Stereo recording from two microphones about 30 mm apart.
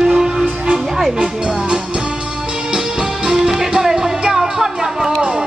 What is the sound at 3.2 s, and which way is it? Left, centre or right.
Music, centre.